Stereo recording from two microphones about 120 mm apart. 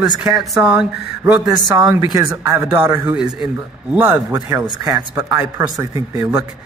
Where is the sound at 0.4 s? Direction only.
10° right (ahead or behind).